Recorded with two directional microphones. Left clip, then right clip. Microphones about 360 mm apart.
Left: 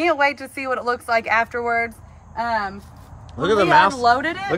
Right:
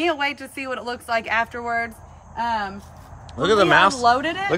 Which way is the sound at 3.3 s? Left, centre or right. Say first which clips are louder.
Even; centre.